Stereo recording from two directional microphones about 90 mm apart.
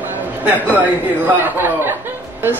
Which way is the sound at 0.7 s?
20° right (ahead or behind).